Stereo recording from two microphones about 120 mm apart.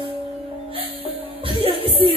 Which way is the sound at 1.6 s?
50° right (ahead or behind).